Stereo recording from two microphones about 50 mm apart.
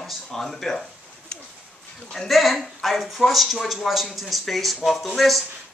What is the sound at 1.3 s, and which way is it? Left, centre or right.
Bird, left.